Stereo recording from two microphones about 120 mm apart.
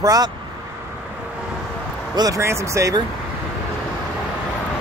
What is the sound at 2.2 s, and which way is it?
Speech, 30° right (ahead or behind).